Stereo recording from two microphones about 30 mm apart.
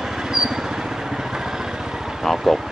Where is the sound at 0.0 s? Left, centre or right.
Centre.